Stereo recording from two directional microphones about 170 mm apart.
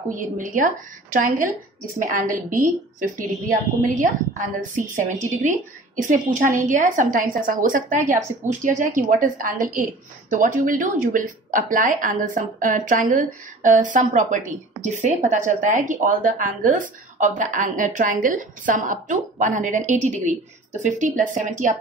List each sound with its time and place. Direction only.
0.1 s speech: 50° right (ahead or behind)